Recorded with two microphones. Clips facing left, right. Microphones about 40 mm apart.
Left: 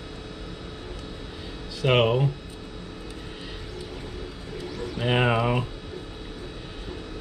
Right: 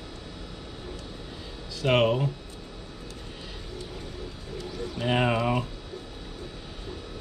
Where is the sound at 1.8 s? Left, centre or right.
Centre.